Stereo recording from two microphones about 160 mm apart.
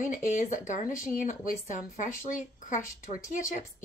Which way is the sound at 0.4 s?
55° left (ahead or behind).